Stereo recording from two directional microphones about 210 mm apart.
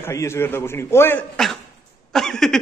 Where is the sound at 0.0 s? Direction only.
15° left (ahead or behind).